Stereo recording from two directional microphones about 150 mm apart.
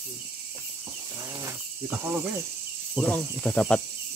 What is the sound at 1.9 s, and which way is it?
Cricket, 10° right (ahead or behind).